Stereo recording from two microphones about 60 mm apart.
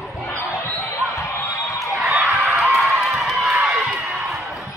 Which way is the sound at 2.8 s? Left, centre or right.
Centre.